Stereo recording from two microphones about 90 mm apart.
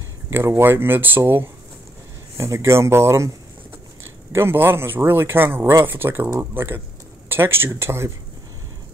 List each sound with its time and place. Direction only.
0.3 s speech: 25° right (ahead or behind)